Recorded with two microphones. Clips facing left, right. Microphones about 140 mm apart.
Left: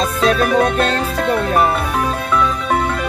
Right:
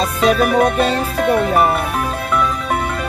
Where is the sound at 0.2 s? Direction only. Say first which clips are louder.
Right 1 dB; 10° right (ahead or behind).